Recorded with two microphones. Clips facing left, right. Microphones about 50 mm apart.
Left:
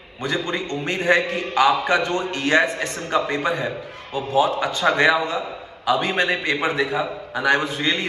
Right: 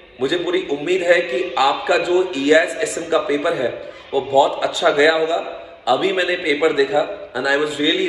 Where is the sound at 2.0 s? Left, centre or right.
Left.